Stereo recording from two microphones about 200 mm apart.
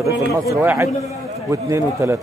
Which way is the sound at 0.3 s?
15° right (ahead or behind).